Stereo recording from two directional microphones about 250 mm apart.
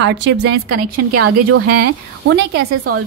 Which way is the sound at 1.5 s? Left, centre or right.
Right.